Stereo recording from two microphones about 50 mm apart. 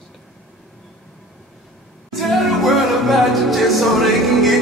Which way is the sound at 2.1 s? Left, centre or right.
Centre.